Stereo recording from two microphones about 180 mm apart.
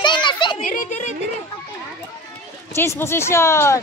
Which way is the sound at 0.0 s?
25° left (ahead or behind).